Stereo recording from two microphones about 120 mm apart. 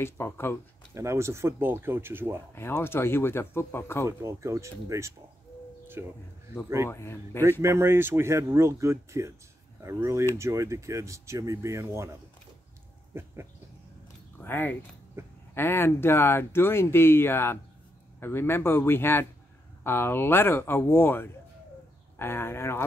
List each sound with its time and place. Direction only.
0.0 s speech: 20° left (ahead or behind)
0.9 s speech: 25° right (ahead or behind)
2.5 s speech: 20° left (ahead or behind)
4.2 s speech: 25° right (ahead or behind)
6.9 s speech: 20° left (ahead or behind)
7.6 s speech: 20° right (ahead or behind)
14.4 s speech: 15° left (ahead or behind)
15.2 s speech: 20° right (ahead or behind)
15.5 s speech: 20° left (ahead or behind)